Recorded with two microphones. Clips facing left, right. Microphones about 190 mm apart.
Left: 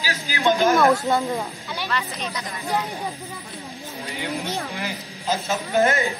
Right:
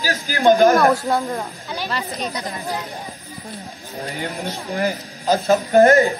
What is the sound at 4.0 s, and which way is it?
A man's voice, 45° right (ahead or behind).